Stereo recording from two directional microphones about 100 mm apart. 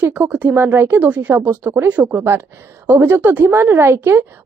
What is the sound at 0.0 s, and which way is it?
A woman's voice, 15° right (ahead or behind).